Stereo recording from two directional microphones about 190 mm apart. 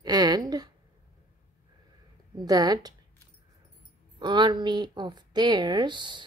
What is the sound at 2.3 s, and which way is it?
Speech, 20° right (ahead or behind).